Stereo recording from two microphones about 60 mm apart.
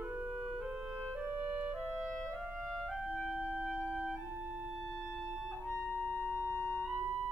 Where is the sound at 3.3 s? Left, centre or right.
Centre.